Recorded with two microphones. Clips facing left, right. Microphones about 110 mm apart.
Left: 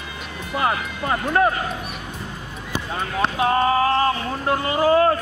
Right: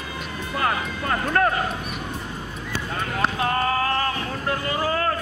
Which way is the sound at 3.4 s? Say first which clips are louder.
Left 7 dB; 20° left (ahead or behind).